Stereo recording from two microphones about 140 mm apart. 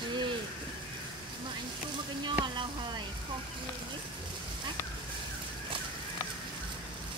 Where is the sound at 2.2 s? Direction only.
35° right (ahead or behind).